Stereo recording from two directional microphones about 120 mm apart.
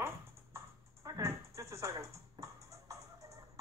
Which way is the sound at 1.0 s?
30° right (ahead or behind).